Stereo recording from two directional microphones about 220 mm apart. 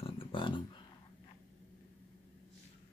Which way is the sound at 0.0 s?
25° left (ahead or behind).